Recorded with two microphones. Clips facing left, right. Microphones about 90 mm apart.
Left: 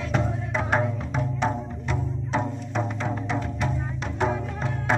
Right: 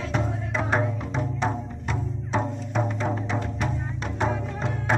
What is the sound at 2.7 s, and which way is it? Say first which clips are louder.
Music: right 3 dB; 5° right (ahead or behind).